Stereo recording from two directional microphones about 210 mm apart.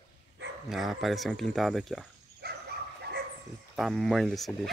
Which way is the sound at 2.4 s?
50° right (ahead or behind).